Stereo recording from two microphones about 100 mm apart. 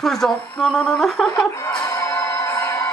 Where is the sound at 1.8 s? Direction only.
30° left (ahead or behind).